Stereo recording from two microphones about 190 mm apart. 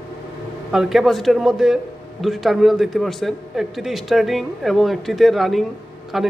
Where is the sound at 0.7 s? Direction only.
Centre (ahead or behind).